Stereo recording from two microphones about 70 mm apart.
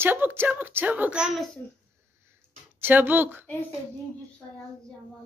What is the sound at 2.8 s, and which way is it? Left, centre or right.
Speech, right.